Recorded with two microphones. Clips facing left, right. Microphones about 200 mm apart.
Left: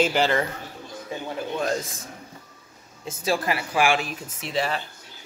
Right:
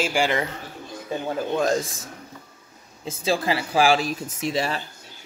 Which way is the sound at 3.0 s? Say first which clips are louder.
Right 1 dB; 30° right (ahead or behind).